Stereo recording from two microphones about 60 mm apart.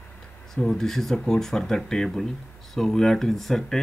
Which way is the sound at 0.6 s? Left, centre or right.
Centre.